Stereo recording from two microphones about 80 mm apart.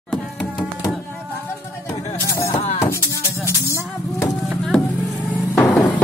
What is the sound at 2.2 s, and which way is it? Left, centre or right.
Speech, left.